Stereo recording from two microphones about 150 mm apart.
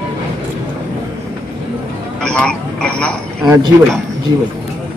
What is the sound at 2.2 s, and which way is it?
Speech, 5° left (ahead or behind).